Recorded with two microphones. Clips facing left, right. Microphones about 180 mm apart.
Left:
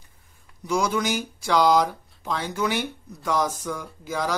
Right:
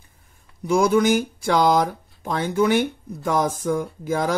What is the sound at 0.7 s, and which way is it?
Speech, 50° right (ahead or behind).